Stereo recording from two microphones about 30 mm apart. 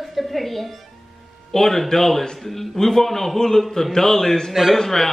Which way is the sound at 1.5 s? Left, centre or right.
Centre.